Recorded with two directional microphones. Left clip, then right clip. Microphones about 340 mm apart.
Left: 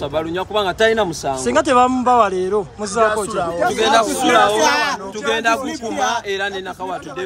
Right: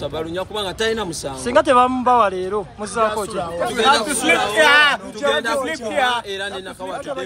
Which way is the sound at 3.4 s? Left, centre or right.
Left.